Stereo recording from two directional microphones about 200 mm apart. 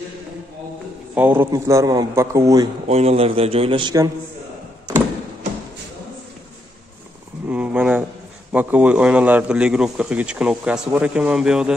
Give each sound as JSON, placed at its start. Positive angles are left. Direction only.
{"t": 1.1, "sound": "a man's voice", "side_deg": -10}
{"t": 2.9, "sound": "a man's voice", "side_deg": -30}
{"t": 7.4, "sound": "a sound", "side_deg": -10}
{"t": 8.5, "sound": "a man's voice", "side_deg": -5}